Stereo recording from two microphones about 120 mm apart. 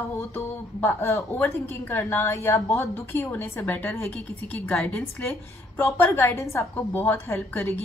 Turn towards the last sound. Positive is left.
turn(degrees=20)  # may be behind; listen again after turning